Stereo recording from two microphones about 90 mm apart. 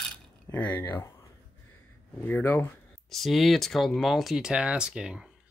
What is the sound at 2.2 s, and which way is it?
Speech, 20° left (ahead or behind).